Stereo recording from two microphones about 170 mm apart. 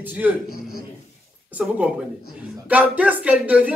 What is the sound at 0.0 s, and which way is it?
A man's voice, 10° right (ahead or behind).